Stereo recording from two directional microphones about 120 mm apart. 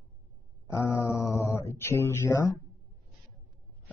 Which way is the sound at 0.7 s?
25° left (ahead or behind).